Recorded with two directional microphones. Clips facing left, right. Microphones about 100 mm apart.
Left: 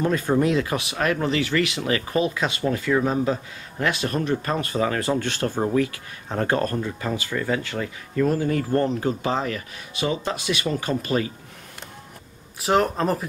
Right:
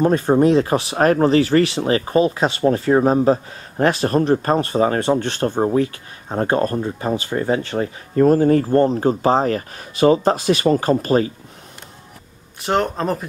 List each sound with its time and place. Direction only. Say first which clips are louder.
0.0 s speech: right 6 dB; 35° right (ahead or behind)
12.5 s speech: right 1 dB; centre (ahead or behind)